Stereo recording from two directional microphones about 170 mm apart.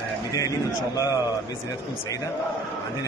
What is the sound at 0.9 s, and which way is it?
Speech, 20° left (ahead or behind).